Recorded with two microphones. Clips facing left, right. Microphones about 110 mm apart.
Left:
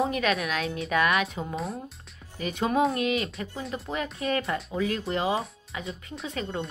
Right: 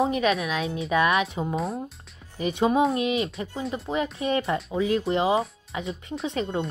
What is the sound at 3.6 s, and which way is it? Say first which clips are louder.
Speech: right 4 dB; centre (ahead or behind).